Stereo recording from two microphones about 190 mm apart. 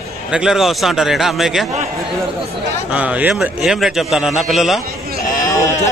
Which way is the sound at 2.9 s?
5° right (ahead or behind).